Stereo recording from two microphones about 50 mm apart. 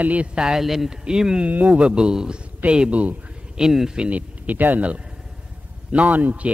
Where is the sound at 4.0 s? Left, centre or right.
Right.